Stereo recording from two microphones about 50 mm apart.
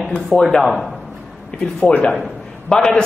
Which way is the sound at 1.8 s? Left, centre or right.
Left.